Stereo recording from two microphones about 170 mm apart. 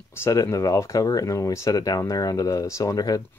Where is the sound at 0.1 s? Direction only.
15° left (ahead or behind).